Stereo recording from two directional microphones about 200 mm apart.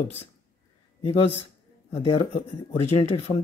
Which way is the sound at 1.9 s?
25° left (ahead or behind).